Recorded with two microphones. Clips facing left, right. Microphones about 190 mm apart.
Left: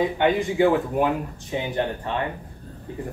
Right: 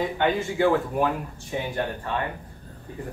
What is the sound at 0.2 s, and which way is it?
Speech, 15° left (ahead or behind).